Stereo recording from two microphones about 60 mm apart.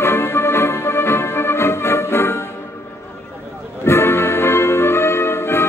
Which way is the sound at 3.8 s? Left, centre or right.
Left.